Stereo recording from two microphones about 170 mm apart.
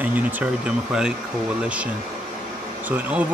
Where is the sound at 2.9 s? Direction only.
10° right (ahead or behind).